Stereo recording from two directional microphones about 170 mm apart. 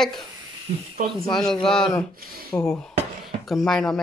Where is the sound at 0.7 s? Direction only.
40° right (ahead or behind).